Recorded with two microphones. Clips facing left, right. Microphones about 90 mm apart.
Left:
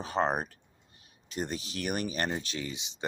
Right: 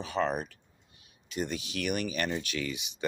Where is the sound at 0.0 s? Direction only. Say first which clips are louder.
Left 1 dB; 40° left (ahead or behind).